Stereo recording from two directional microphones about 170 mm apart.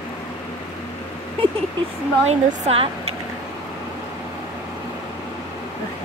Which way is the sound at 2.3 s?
40° right (ahead or behind).